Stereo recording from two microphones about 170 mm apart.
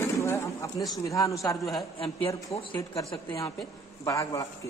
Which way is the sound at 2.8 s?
20° left (ahead or behind).